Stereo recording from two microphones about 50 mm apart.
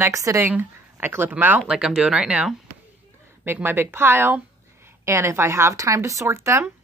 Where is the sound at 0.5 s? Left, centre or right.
Right.